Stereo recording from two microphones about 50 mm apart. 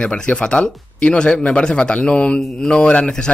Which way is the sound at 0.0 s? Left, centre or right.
Left.